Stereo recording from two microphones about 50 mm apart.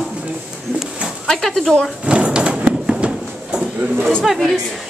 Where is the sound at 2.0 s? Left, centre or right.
Centre.